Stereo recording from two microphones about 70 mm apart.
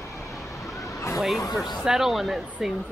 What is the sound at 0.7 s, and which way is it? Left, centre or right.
Vehicle, left.